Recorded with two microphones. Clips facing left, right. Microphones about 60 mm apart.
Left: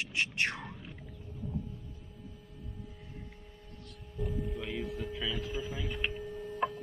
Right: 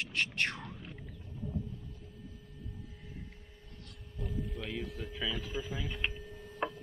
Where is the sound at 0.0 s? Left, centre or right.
Centre.